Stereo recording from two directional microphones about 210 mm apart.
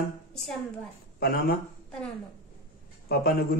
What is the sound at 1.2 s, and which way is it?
Speech, 50° left (ahead or behind).